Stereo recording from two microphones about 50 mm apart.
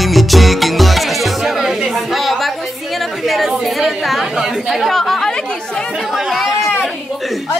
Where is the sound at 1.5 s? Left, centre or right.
Centre.